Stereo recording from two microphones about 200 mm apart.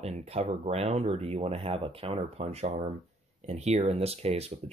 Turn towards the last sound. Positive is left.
turn(degrees=-30)  # may be behind; listen again after turning